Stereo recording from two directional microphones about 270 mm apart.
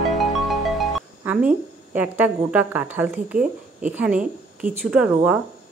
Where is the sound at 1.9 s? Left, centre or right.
Centre.